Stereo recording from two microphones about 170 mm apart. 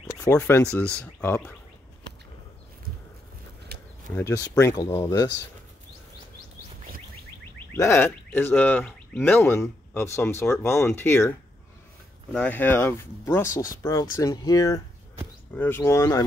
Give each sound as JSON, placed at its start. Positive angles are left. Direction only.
{"t": 0.2, "sound": "speech", "side_deg": 10}
{"t": 3.7, "sound": "a sound", "side_deg": -70}
{"t": 4.1, "sound": "speech", "side_deg": 20}
{"t": 7.7, "sound": "speech", "side_deg": 15}